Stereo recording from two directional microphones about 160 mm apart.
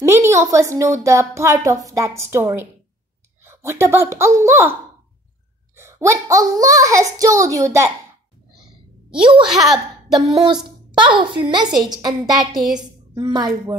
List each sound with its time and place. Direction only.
0.0 s a woman's voice: 20° right (ahead or behind)
5.8 s a woman's voice: 15° right (ahead or behind)
9.4 s speech: 5° right (ahead or behind)
10.9 s a woman's voice: 30° right (ahead or behind)